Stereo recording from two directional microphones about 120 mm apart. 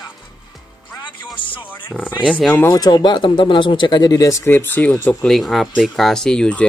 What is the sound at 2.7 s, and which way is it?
Speech, 35° left (ahead or behind).